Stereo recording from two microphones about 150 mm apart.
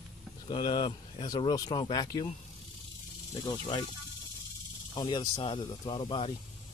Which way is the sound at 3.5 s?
30° left (ahead or behind).